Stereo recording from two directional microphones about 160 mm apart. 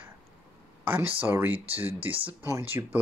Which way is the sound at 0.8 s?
10° right (ahead or behind).